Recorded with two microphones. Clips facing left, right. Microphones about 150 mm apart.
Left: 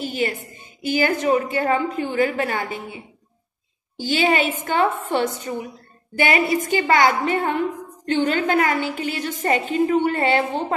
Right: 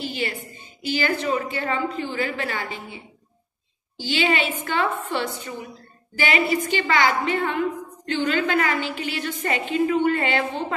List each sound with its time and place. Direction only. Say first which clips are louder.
0.0 s a woman's voice: left 4 dB; 45° left (ahead or behind)
4.0 s a woman's voice: left 3 dB; 45° left (ahead or behind)